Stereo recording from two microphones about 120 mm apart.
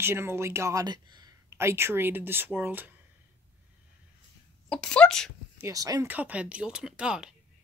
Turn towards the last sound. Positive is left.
turn(degrees=-5)  # may be behind; listen again after turning